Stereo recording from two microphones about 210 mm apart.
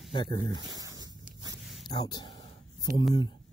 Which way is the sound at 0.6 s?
20° right (ahead or behind).